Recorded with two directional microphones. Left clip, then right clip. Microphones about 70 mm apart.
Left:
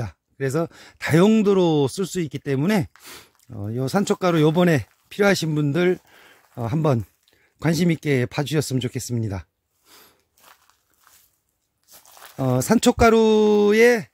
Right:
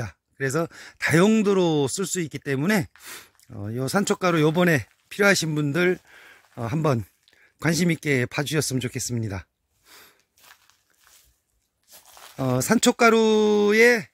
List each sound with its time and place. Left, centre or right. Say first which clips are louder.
0.0 s speech: left 1 dB; left
6.0 s a sound: right 2 dB; left
6.7 s speech: left 2 dB; left
7.5 s speech: left 1 dB; left
10.4 s walk: left 1 dB; centre
11.9 s tearing: left 1 dB; centre
12.5 s speech: left 2 dB; left